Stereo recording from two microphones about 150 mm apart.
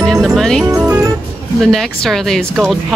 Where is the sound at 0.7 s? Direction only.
20° right (ahead or behind).